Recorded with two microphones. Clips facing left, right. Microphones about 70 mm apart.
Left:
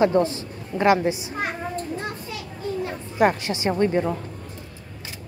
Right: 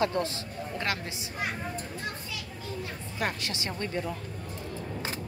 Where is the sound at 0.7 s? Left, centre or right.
Left.